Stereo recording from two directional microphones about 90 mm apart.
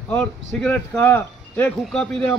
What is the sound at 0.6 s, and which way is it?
Speech, 20° left (ahead or behind).